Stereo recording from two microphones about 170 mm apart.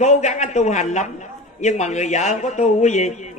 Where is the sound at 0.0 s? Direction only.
45° left (ahead or behind).